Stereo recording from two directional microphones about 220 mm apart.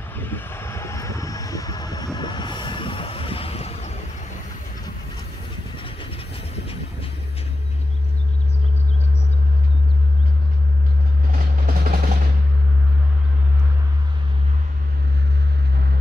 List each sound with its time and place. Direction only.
0.1 s vehicle: 10° left (ahead or behind); by 4.0 s 30° left (ahead or behind)
11.3 s vehicle: 40° right (ahead or behind)